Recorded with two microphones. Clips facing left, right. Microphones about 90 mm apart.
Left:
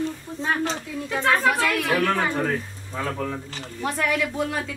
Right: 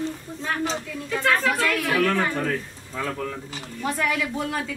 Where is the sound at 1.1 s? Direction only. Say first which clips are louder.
Left 1 dB; 15° left (ahead or behind).